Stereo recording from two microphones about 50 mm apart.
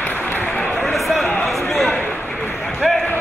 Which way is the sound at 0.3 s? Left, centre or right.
Left.